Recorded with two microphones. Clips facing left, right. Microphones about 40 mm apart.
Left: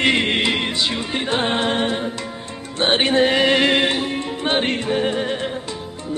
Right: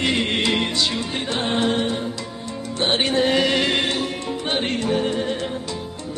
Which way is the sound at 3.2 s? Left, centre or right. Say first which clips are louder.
Left 3 dB; left.